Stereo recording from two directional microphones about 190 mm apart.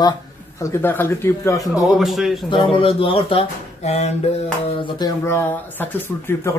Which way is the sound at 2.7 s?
30° left (ahead or behind).